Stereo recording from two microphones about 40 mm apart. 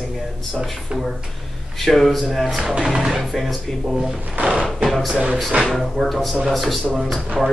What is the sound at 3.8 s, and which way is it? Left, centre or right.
Speech, centre.